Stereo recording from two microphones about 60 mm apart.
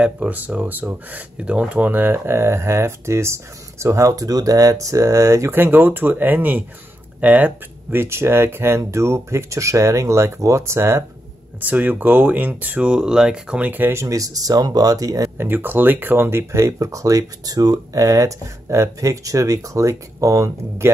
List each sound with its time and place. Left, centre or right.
0.0 s speech: right
4.1 s speech: right
5.5 s speech: right
11.6 s speech: right; by 13.6 s centre
13.6 s speech: right
13.9 s speech: right
15.3 s speech: right
20.8 s speech: right